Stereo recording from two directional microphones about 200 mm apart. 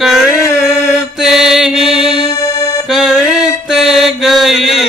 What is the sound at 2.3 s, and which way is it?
Accordion, 15° left (ahead or behind).